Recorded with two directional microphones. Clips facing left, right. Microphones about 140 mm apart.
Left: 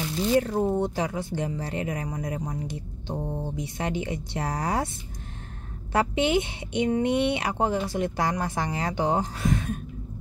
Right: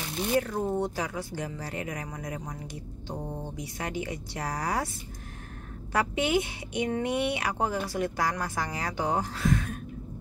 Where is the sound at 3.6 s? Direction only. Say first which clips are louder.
Left 3 dB; 25° left (ahead or behind).